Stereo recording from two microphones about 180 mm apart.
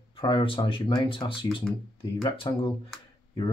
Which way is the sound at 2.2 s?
25° left (ahead or behind).